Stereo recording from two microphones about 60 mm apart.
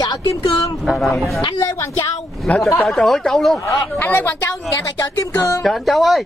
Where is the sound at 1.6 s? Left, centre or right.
Left.